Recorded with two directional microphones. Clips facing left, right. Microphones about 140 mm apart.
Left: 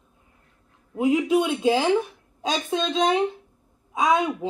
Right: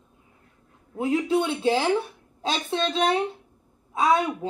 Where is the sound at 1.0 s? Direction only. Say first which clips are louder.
Left 3 dB; 15° left (ahead or behind).